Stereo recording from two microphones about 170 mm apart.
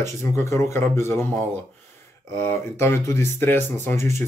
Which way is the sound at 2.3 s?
15° left (ahead or behind).